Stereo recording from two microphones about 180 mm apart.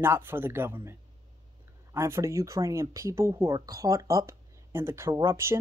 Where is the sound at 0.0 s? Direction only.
10° right (ahead or behind).